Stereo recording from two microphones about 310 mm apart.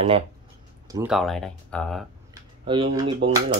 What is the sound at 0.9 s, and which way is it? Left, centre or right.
Speech, centre.